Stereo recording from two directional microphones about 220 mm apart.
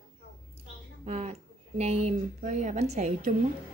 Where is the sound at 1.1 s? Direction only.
30° right (ahead or behind).